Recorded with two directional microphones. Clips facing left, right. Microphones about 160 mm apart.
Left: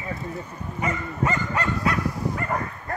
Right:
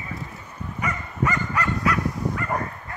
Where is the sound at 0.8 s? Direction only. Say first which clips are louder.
Left 1 dB; 30° left (ahead or behind).